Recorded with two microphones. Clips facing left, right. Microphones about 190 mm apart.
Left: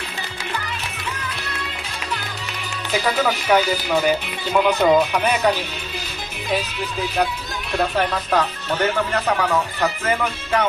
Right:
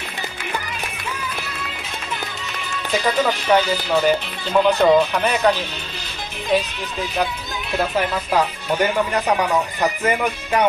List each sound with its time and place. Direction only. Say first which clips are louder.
2.9 s speech: right 1 dB; 5° left (ahead or behind)
6.5 s music: right 3 dB; centre (ahead or behind)
7.7 s speech: even; 5° right (ahead or behind)